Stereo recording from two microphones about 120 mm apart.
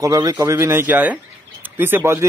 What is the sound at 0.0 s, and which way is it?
Speech, 30° right (ahead or behind).